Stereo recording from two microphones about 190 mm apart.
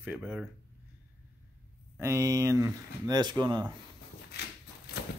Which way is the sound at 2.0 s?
15° right (ahead or behind).